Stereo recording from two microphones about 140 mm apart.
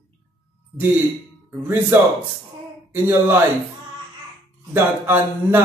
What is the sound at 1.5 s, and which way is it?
A man's voice, 15° right (ahead or behind).